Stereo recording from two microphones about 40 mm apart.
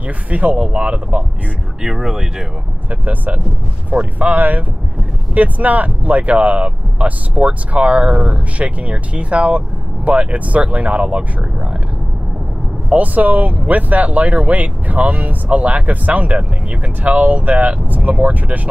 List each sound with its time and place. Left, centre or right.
0.0 s speech: right
1.8 s speech: centre
2.9 s speech: right
8.5 s speech: right
12.9 s speech: right